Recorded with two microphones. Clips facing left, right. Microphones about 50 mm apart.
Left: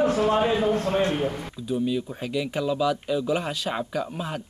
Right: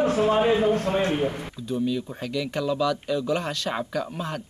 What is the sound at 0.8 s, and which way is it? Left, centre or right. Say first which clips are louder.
Speech: left 1 dB; right.